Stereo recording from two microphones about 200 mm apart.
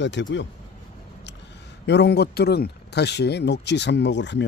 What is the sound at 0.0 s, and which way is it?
Speech, 65° left (ahead or behind).